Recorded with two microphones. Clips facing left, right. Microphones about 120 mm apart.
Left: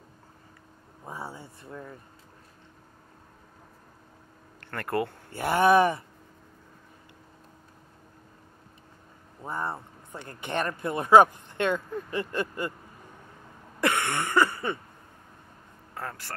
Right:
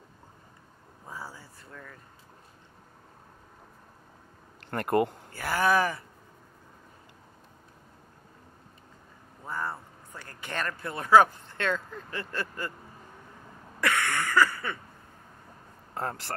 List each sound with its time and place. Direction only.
1.0 s speech: 25° left (ahead or behind)
4.6 s speech: 20° right (ahead or behind)
5.3 s speech: 25° left (ahead or behind)
9.4 s speech: 25° left (ahead or behind)
13.7 s a sound: 25° left (ahead or behind)
15.9 s speech: 35° right (ahead or behind)